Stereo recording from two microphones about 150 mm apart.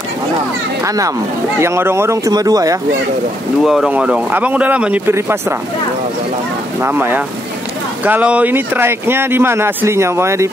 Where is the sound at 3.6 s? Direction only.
Centre (ahead or behind).